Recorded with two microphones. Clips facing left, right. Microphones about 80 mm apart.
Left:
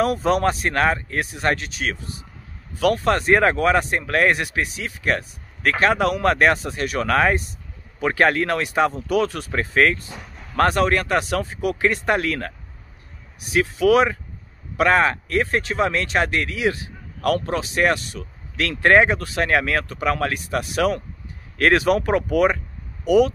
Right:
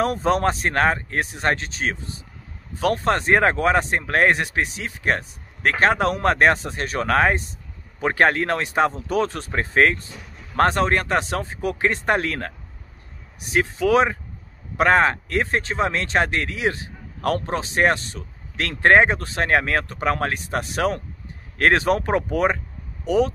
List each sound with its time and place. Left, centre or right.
0.0 s speech: right